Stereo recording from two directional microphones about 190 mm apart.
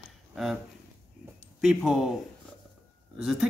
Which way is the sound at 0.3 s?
Centre (ahead or behind).